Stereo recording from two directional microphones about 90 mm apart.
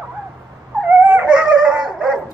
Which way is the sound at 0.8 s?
15° right (ahead or behind).